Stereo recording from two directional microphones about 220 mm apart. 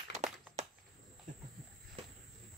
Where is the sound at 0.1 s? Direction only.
30° right (ahead or behind).